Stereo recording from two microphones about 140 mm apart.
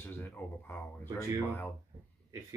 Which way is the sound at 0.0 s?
15° left (ahead or behind).